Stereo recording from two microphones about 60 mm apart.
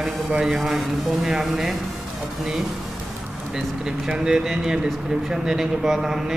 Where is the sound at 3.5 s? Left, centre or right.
Centre.